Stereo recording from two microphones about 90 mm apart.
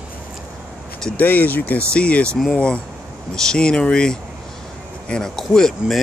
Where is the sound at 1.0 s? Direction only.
15° left (ahead or behind).